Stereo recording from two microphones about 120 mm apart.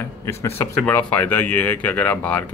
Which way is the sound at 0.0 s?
25° left (ahead or behind).